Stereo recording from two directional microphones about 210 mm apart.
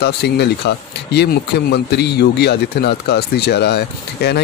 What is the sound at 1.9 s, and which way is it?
Speech, 50° left (ahead or behind).